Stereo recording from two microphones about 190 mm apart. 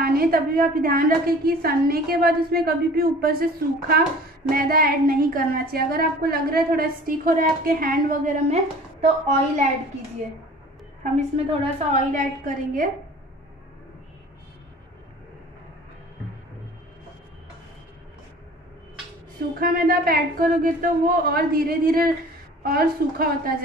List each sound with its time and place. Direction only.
0.0 s a woman's voice: 50° right (ahead or behind)
11.1 s a woman's voice: 35° right (ahead or behind)
19.6 s a woman's voice: 50° right (ahead or behind)